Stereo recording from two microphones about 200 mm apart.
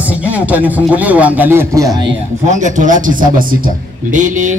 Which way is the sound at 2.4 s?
35° right (ahead or behind).